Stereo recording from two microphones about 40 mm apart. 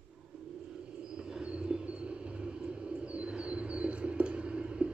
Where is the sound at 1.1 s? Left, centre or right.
Right.